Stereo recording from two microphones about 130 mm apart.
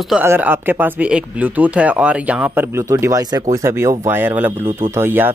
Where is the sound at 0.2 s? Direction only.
15° right (ahead or behind).